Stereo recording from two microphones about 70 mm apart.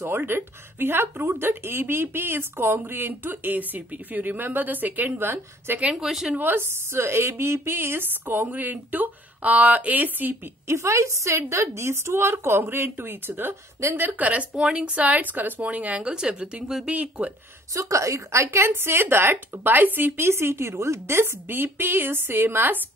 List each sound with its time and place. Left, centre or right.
0.0 s speech: right
5.8 s speech: centre
6.0 s a woman's voice: centre
6.3 s speech: right
10.7 s speech: right
17.7 s speech: right